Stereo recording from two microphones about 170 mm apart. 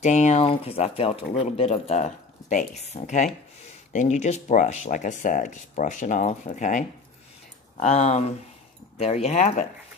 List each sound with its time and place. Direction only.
0.0 s speech: 40° left (ahead or behind)